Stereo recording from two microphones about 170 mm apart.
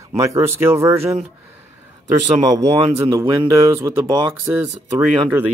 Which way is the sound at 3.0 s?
15° right (ahead or behind).